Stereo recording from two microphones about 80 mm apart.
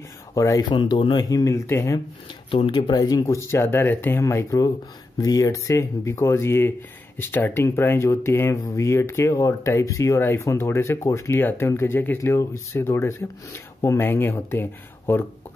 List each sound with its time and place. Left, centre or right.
0.3 s speech: left
0.6 s speech: left
1.3 s speech: left
3.0 s speech: left
3.3 s speech: left
12.2 s speech: left
14.0 s speech: left